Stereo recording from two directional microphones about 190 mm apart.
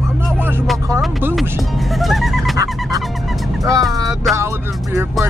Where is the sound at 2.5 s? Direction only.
15° right (ahead or behind).